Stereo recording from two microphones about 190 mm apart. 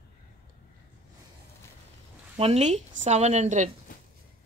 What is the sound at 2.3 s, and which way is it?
Speech, 30° right (ahead or behind).